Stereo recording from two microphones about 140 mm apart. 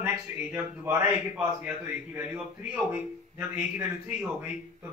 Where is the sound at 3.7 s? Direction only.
10° right (ahead or behind).